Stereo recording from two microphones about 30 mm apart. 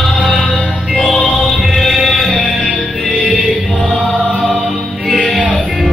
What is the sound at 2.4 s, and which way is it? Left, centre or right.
Music, right.